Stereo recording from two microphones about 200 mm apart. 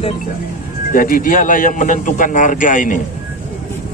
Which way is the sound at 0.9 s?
45° left (ahead or behind).